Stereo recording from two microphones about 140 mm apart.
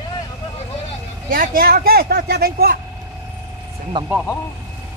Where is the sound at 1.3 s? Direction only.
90° right.